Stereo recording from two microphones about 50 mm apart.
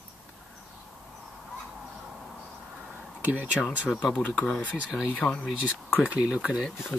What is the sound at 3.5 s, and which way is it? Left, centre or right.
Speech, left.